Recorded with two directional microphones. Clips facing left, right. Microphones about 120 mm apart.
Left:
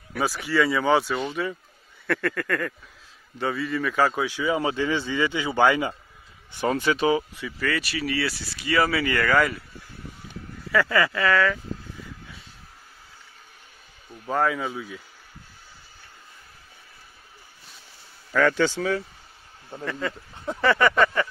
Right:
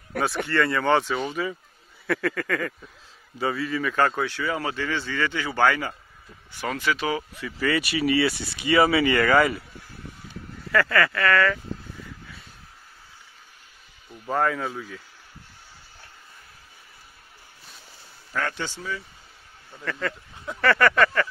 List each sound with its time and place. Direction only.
0.5 s speech: 5° left (ahead or behind)
4.3 s a man's voice: 15° left (ahead or behind)
6.5 s speech: 25° left (ahead or behind)
7.1 s speech: 20° left (ahead or behind)
7.6 s speech: 10° right (ahead or behind)
10.9 s speech: 10° left (ahead or behind)
14.1 s speech: centre (ahead or behind)
18.6 s speech: 90° left
19.8 s a man's voice: 10° left (ahead or behind)